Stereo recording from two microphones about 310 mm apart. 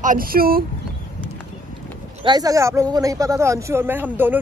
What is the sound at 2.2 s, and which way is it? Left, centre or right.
Speech, centre.